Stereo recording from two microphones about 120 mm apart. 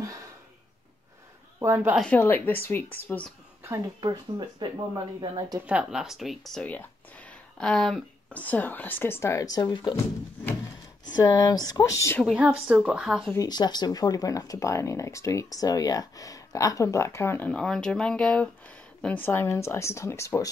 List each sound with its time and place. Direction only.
1.6 s a woman's voice: 20° right (ahead or behind)
2.1 s speech: 15° left (ahead or behind)
4.0 s speech: 40° right (ahead or behind)
5.7 s speech: 5° right (ahead or behind)
6.6 s speech: 10° left (ahead or behind)
8.3 s speech: 15° left (ahead or behind); by 9.9 s 35° left (ahead or behind)
11.1 s speech: 30° left (ahead or behind)
12.3 s a woman's voice: 10° right (ahead or behind)
13.5 s speech: 35° left (ahead or behind)